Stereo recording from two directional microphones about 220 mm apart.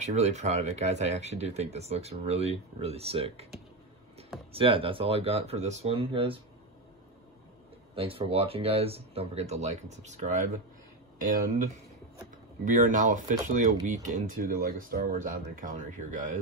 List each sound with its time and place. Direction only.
0.0 s speech: 30° right (ahead or behind)
4.5 s speech: 25° right (ahead or behind)
7.9 s speech: 25° right (ahead or behind)
11.3 s speech: 35° right (ahead or behind)